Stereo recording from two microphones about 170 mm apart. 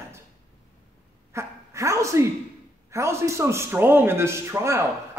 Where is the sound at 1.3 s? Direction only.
15° right (ahead or behind).